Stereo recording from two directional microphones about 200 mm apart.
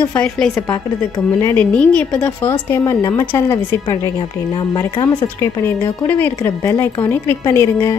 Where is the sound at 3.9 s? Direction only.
20° left (ahead or behind).